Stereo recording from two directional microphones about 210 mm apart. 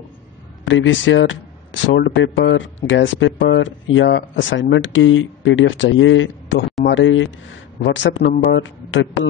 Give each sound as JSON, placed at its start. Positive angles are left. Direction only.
{"t": 0.7, "sound": "speech", "side_deg": 65}